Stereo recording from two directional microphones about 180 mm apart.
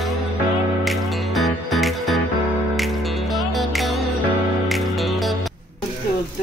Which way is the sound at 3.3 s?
Centre (ahead or behind).